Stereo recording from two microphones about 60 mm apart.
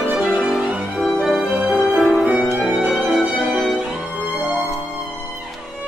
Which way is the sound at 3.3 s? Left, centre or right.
Centre.